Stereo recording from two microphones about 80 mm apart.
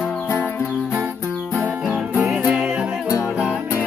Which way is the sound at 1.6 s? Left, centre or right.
Centre.